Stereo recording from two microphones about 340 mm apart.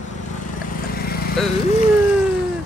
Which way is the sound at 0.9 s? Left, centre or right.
Left.